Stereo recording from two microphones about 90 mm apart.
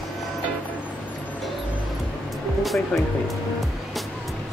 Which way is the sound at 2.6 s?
Centre (ahead or behind).